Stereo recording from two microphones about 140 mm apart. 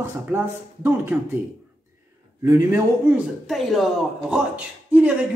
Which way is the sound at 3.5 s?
Centre (ahead or behind).